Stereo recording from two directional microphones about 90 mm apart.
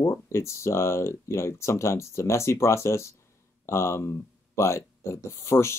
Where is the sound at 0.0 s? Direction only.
30° left (ahead or behind).